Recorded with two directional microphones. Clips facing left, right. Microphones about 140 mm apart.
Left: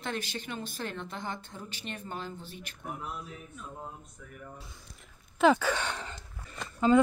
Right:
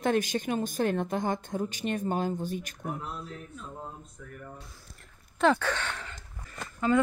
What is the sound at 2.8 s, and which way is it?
Speech, 5° left (ahead or behind).